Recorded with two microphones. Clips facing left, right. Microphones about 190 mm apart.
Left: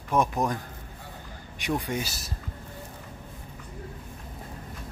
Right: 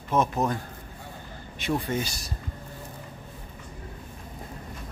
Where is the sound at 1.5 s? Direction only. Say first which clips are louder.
Right 2 dB; 15° left (ahead or behind).